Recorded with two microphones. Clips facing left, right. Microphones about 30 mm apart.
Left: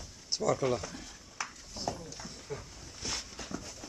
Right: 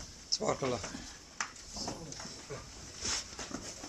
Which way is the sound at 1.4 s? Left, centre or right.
Left.